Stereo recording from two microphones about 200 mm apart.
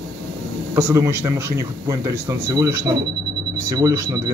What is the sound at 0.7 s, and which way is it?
A man's voice, 15° right (ahead or behind).